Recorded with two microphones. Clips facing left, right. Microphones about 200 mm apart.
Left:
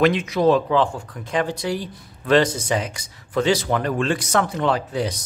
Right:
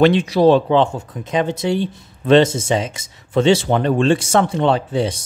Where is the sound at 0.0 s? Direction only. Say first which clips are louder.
Right 5 dB; 30° right (ahead or behind).